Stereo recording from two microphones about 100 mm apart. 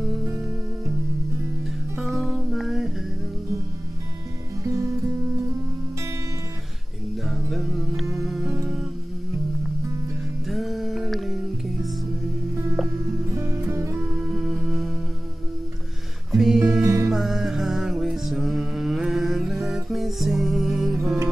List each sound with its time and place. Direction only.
2.0 s music: centre (ahead or behind)
4.6 s music: 30° right (ahead or behind)
7.2 s music: centre (ahead or behind)
10.5 s music: centre (ahead or behind)
13.3 s music: 30° right (ahead or behind)
13.9 s music: 5° right (ahead or behind)
16.3 s music: 5° right (ahead or behind)
16.8 s music: 30° right (ahead or behind)
17.1 s music: centre (ahead or behind)